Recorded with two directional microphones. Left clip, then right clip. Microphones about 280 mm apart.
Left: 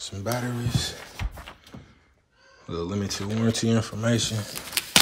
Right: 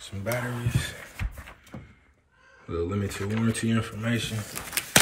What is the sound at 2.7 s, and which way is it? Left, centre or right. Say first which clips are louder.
Speech: even; centre.